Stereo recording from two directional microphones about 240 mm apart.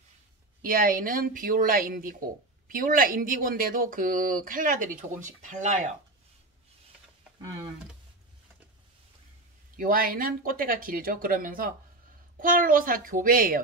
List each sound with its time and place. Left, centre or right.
0.7 s speech: right
9.8 s speech: right